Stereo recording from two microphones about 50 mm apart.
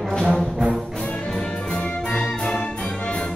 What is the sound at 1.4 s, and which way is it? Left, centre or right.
Music, centre.